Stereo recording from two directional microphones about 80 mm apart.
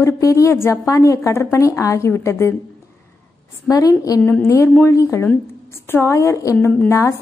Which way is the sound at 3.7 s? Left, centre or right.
Left.